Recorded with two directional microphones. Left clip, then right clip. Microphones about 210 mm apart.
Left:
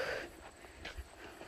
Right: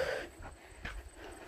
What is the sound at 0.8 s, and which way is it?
Clip-clop, 15° right (ahead or behind).